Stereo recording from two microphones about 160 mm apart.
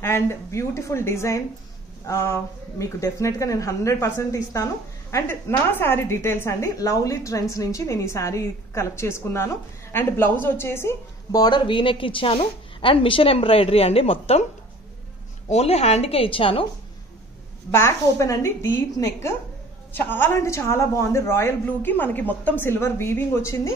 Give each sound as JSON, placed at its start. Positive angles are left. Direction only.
{"t": 0.0, "sound": "a woman's voice", "side_deg": 15}
{"t": 15.5, "sound": "a woman's voice", "side_deg": 40}
{"t": 17.6, "sound": "a woman's voice", "side_deg": 15}